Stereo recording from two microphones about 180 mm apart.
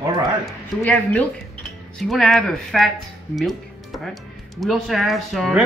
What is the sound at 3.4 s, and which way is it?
Music, centre (ahead or behind).